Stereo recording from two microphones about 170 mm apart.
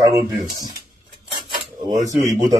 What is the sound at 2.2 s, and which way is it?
Speech, 20° right (ahead or behind).